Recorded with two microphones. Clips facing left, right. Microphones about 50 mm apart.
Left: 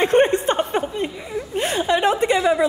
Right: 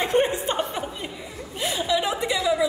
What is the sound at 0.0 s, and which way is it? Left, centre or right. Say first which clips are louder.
Chuckle: left 6 dB; left.